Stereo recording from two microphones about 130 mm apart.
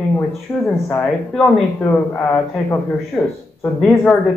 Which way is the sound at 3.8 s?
5° left (ahead or behind).